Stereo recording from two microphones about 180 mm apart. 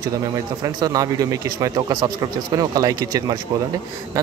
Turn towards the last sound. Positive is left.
turn(degrees=-20)  # may be behind; listen again after turning